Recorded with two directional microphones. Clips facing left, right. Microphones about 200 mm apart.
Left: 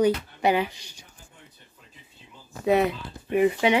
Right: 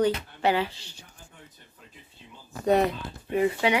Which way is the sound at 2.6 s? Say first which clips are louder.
Left 1 dB; centre (ahead or behind).